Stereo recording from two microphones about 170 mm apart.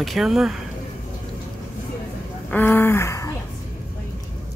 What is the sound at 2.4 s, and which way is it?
Speech, 10° left (ahead or behind).